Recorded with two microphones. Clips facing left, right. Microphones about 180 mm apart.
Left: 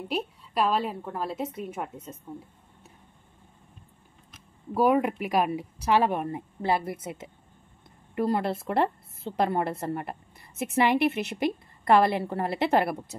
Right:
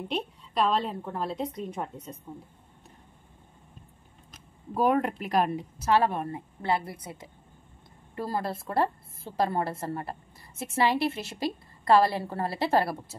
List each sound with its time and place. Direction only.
0.1 s speech: 5° left (ahead or behind)
4.7 s a woman's voice: 5° left (ahead or behind)